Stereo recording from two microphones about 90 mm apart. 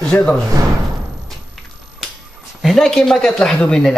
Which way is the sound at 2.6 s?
5° left (ahead or behind).